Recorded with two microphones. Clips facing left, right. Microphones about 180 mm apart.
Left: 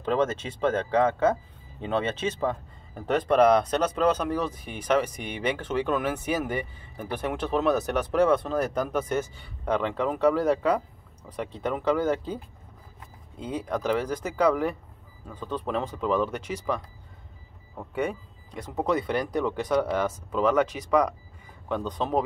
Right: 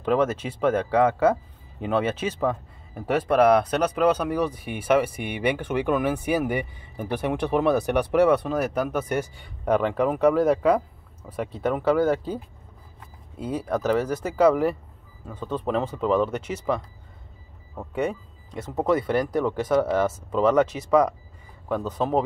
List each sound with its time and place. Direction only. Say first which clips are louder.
0.0 s speech: right 3 dB; 10° right (ahead or behind)
18.9 s speech: right 4 dB; 20° left (ahead or behind)
19.7 s speech: right 3 dB; 5° right (ahead or behind)
20.3 s speech: right 3 dB; 10° left (ahead or behind)
21.6 s speech: right 3 dB; 5° right (ahead or behind)